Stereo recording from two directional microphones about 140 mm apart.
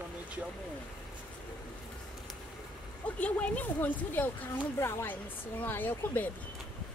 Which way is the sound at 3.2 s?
10° left (ahead or behind).